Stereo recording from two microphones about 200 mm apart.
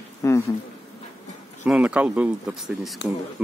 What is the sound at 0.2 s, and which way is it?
Speech, 15° left (ahead or behind).